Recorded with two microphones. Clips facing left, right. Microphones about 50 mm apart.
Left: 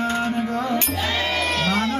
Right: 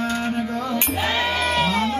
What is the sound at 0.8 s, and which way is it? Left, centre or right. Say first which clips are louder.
Sheep: right 1 dB; right.